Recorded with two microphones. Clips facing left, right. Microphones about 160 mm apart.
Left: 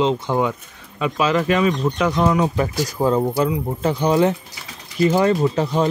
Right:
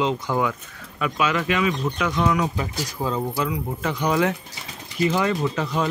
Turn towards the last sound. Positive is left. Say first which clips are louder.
# left 5 dB
turn(degrees=30)  # may be behind; listen again after turning